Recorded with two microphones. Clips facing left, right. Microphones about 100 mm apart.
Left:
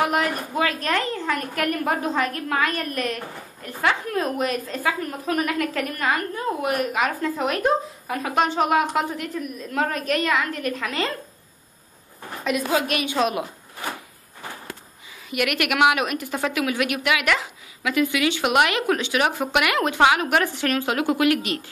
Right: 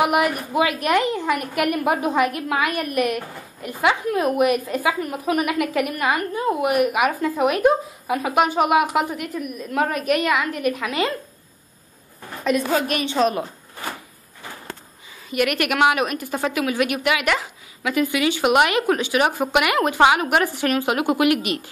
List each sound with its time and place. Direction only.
0.0 s a woman's voice: 15° right (ahead or behind)
12.4 s a woman's voice: 5° left (ahead or behind)
15.2 s a woman's voice: centre (ahead or behind)